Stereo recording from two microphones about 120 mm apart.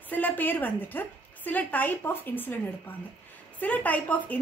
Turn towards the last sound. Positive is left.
turn(degrees=15)  # may be behind; listen again after turning